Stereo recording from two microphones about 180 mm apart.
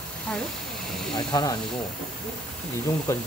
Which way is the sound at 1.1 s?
25° left (ahead or behind).